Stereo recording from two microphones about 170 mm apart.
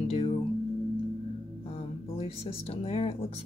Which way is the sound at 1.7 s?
35° left (ahead or behind).